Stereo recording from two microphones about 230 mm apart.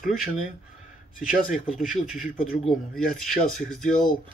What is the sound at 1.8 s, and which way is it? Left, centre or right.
Speech, centre.